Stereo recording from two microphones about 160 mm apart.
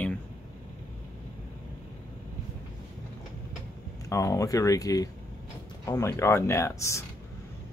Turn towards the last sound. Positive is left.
turn(degrees=20)  # may be behind; listen again after turning